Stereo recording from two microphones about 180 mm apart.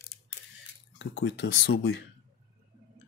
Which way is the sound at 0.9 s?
80° left.